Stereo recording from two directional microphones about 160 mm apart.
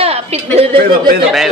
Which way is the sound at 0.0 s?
40° right (ahead or behind).